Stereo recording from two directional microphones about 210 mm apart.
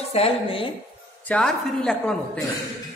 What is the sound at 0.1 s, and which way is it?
Speech, 25° left (ahead or behind).